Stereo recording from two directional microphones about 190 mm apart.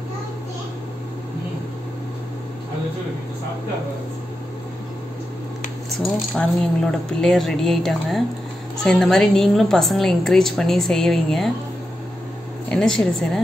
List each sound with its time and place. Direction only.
6.3 s a woman's voice: 5° left (ahead or behind)
12.6 s a woman's voice: 5° left (ahead or behind)